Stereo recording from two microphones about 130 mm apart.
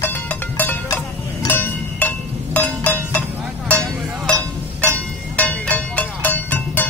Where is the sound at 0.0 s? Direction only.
15° left (ahead or behind).